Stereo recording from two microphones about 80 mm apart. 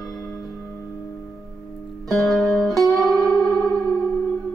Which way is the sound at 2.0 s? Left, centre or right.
Centre.